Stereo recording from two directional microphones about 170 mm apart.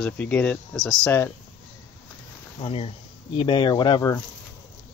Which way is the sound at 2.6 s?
35° left (ahead or behind).